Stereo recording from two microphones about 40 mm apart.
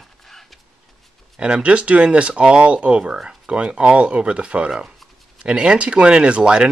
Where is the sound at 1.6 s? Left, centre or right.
Right.